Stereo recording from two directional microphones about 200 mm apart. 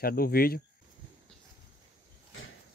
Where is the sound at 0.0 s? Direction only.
50° left (ahead or behind).